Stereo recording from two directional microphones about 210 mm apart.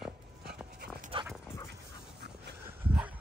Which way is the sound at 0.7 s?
40° right (ahead or behind).